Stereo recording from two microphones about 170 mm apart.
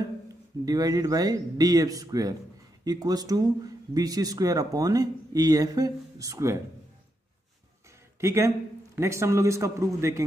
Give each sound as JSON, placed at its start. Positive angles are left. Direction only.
{"t": 0.7, "sound": "speech", "side_deg": -20}
{"t": 8.2, "sound": "a man's voice", "side_deg": -15}